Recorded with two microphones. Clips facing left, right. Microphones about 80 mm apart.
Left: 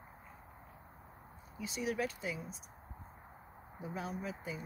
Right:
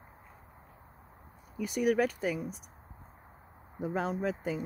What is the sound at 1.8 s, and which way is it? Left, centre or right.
Speech, right.